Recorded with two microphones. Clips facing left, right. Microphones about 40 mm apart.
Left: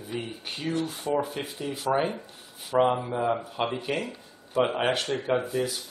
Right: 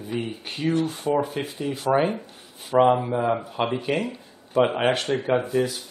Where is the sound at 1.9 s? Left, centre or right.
Centre.